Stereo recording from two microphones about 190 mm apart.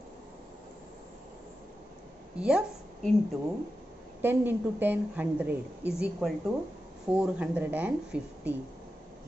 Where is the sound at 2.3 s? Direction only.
5° right (ahead or behind).